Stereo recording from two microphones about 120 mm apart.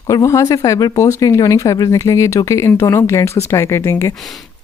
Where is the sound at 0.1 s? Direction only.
25° left (ahead or behind).